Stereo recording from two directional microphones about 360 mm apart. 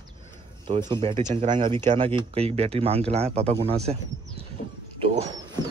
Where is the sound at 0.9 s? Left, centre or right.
Centre.